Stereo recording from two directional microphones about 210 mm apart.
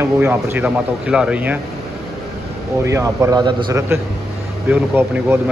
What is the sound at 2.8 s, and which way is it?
Speech, 15° right (ahead or behind).